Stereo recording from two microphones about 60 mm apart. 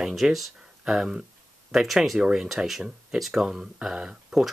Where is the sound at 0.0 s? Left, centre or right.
Centre.